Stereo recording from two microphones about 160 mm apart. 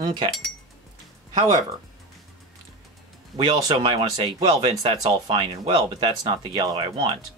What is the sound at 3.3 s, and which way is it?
Speech, 30° right (ahead or behind).